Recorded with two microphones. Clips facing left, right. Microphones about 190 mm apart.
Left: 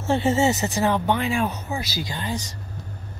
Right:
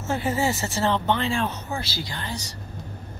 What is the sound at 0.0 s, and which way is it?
Speech, 25° left (ahead or behind).